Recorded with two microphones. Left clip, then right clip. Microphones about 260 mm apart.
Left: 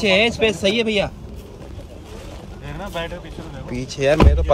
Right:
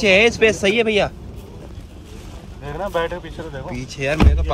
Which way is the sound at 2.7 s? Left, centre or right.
Centre.